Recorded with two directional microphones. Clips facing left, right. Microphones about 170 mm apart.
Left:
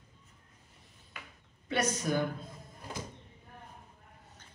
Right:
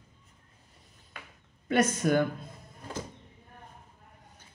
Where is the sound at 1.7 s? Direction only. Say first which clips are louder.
Right 6 dB; 50° right (ahead or behind).